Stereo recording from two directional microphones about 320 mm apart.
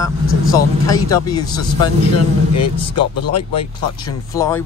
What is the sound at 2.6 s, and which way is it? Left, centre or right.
Speech, left.